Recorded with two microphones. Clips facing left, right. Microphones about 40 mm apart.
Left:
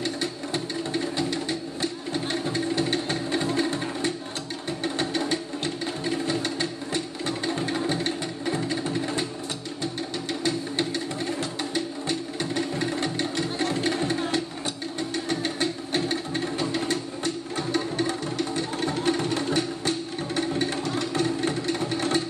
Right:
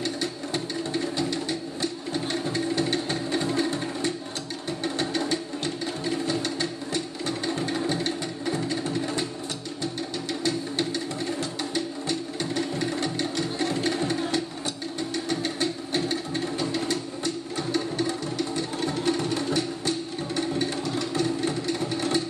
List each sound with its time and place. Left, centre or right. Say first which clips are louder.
0.0 s sewing machine: even; centre
3.7 s a sound: left 1 dB; left
4.8 s music: left 1 dB; centre
10.4 s a sound: even; left
11.7 s sewing machine: even; left
15.2 s music: even; left